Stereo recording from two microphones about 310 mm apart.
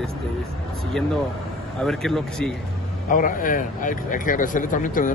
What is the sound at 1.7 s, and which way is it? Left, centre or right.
Speech, centre.